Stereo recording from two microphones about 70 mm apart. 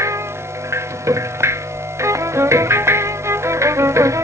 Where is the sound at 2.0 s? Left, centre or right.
Right.